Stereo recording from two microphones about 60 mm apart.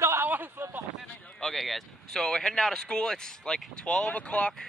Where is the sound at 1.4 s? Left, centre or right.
Centre.